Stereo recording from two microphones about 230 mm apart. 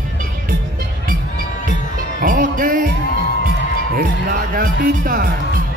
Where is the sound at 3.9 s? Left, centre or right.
Right.